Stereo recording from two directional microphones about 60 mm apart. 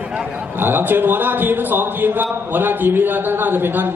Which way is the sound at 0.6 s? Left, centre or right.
Right.